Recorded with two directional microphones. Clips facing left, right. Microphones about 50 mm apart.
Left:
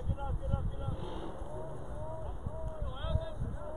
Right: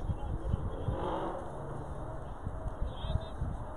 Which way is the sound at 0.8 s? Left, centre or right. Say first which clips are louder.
Right 7 dB; right.